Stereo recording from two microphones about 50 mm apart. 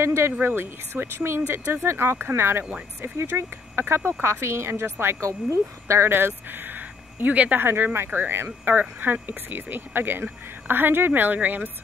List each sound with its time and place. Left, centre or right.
0.0 s speech: right
0.4 s speech: right
6.1 s speech: right
7.6 s speech: right